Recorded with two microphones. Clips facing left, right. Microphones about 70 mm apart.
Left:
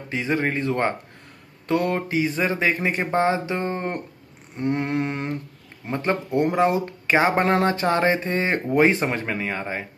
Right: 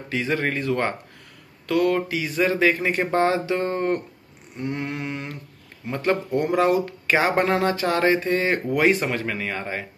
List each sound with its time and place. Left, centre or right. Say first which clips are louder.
0.1 s speech: left 1 dB; left
4.6 s a sound: left 5 dB; left
5.9 s speech: right 1 dB; left